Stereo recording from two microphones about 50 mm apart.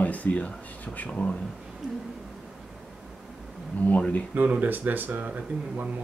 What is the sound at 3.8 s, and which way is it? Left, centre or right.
Speech, left.